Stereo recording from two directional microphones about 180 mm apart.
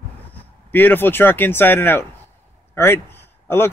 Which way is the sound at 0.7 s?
10° left (ahead or behind).